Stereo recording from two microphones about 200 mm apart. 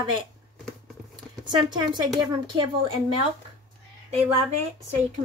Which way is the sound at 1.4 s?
20° right (ahead or behind).